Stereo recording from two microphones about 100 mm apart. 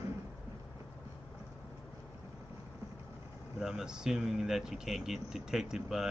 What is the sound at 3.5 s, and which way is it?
Speech, 5° right (ahead or behind).